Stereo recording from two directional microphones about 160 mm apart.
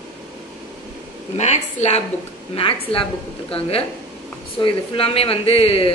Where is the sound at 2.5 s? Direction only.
35° left (ahead or behind).